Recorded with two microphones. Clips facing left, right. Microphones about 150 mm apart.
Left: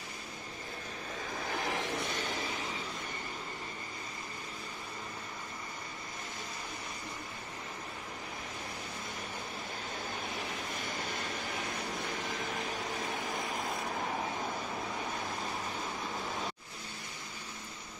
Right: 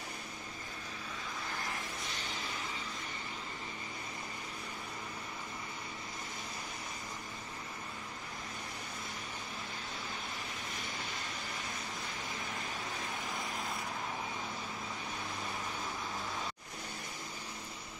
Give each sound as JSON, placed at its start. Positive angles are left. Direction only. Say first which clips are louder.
{"t": 1.5, "sound": "vehicle", "louder": "left 10 dB", "side_deg": 80}